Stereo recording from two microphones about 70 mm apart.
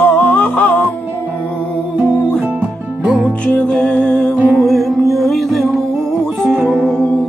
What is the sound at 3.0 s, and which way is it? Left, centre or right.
Music, centre.